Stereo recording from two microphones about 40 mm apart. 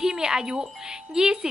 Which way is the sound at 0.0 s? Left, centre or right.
Centre.